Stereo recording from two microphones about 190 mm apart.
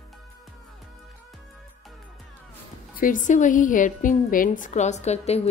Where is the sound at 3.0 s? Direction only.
45° left (ahead or behind).